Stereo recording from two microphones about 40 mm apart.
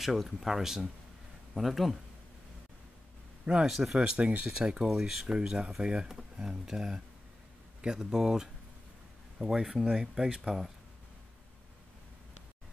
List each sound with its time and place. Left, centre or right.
0.0 s speech: centre
3.6 s speech: centre
4.2 s speech: right
4.5 s speech: centre